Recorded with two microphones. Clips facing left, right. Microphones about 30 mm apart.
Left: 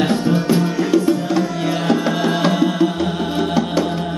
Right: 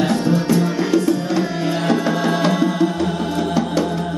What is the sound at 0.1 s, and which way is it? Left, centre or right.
Music, left.